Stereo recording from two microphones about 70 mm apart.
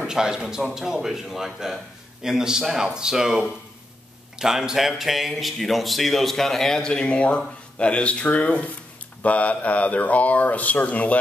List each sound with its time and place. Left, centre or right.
0.0 s speech: centre
4.4 s speech: centre